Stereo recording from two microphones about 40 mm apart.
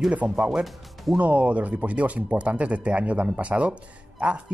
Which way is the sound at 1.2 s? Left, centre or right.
Right.